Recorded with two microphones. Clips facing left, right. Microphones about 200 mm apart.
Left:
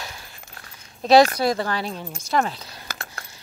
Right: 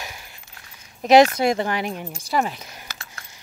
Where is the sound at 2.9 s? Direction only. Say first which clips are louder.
Left 5 dB; 55° left (ahead or behind).